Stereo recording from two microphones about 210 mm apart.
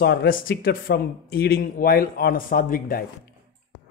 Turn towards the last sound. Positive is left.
turn(degrees=40)  # may be behind; listen again after turning